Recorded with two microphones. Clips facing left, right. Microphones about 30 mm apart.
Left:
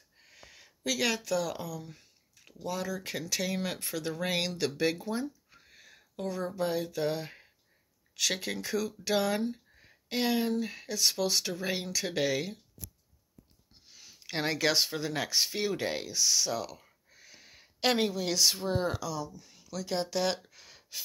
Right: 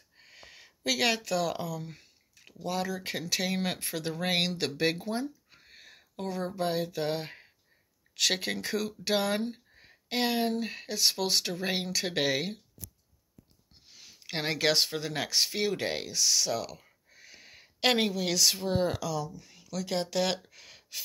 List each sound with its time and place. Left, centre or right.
0.2 s a sound: right
0.8 s speech: right
8.2 s speech: right
13.9 s a sound: right
14.4 s speech: right
15.8 s speech: right
16.1 s speech: right
17.1 s a sound: right
17.7 s speech: right
18.1 s speech: right
18.6 s speech: right
18.9 s speech: right
19.3 s speech: right
20.5 s a sound: right